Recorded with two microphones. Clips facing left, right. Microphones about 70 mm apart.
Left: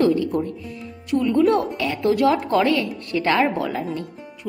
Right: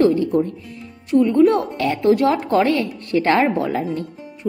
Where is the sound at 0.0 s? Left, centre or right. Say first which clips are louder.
Right 3 dB; right.